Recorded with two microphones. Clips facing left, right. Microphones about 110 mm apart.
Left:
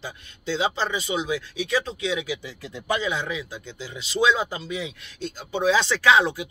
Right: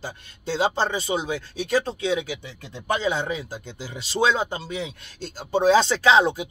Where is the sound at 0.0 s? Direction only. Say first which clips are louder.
Right 1 dB; 40° right (ahead or behind).